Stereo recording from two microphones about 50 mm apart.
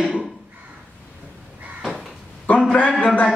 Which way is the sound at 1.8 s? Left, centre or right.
Centre.